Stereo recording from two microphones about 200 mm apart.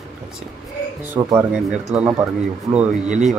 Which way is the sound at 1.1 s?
10° right (ahead or behind).